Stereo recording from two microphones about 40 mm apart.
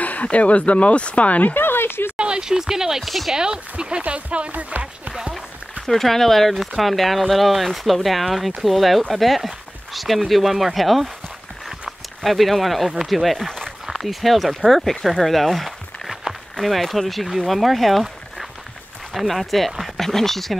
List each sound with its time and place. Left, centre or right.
0.0 s speech: left
1.5 s a sound: left
2.1 s speech: right
3.0 s speech: centre
3.7 s speech: right
5.9 s speech: centre
12.2 s speech: centre
15.0 s a sound: centre
16.6 s speech: centre